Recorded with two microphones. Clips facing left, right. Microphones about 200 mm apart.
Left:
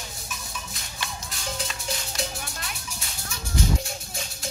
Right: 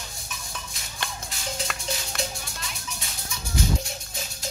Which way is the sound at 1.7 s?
60° right (ahead or behind).